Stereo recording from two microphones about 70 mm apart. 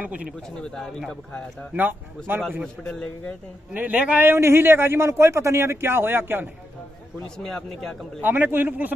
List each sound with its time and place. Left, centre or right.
0.0 s a man's voice: right
0.6 s a man's voice: centre
1.7 s a man's voice: right
2.8 s speech: centre
3.7 s a man's voice: right
4.3 s a man's voice: right
7.3 s speech: centre
8.2 s a man's voice: right